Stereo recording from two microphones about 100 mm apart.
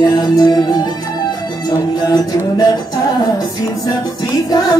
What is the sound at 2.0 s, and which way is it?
Music, 40° left (ahead or behind).